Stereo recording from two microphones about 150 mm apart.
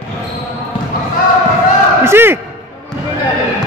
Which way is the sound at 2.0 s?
15° right (ahead or behind).